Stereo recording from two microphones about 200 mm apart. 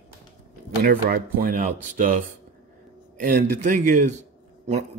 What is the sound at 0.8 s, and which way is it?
Speech, 45° right (ahead or behind).